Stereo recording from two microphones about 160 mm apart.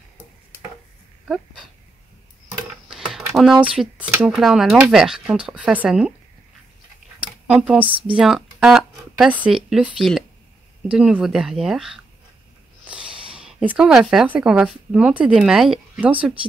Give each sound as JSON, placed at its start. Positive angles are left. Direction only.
{"t": 2.9, "sound": "a sound", "side_deg": -5}
{"t": 3.3, "sound": "speech", "side_deg": 0}
{"t": 7.2, "sound": "a sound", "side_deg": -5}
{"t": 7.8, "sound": "speech", "side_deg": -30}
{"t": 8.2, "sound": "speech", "side_deg": -5}
{"t": 12.8, "sound": "snort", "side_deg": -5}
{"t": 13.3, "sound": "speech", "side_deg": -5}